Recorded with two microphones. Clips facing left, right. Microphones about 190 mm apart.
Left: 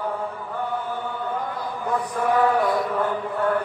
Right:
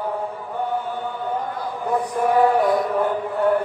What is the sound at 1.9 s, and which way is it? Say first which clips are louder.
Chant: right 3 dB; 20° right (ahead or behind).